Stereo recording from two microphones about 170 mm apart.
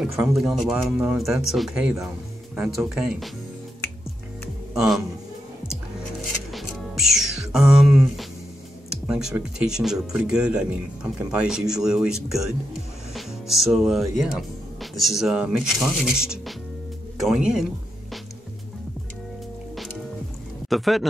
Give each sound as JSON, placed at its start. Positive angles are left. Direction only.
{"t": 0.0, "sound": "speech", "side_deg": 0}
{"t": 4.7, "sound": "speech", "side_deg": 0}
{"t": 6.5, "sound": "music", "side_deg": 0}
{"t": 9.0, "sound": "speech", "side_deg": -5}
{"t": 13.1, "sound": "music", "side_deg": 0}
{"t": 14.1, "sound": "speech", "side_deg": 0}
{"t": 20.7, "sound": "speech", "side_deg": 0}